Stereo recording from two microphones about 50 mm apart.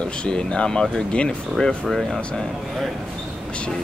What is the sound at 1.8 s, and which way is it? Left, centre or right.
Speech, centre.